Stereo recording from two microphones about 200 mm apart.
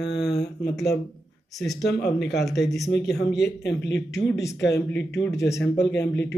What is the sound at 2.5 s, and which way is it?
Speech, centre (ahead or behind).